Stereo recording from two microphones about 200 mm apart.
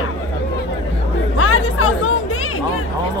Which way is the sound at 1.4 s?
90° left.